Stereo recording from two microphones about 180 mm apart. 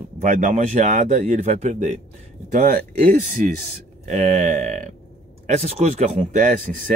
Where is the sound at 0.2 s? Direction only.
45° right (ahead or behind).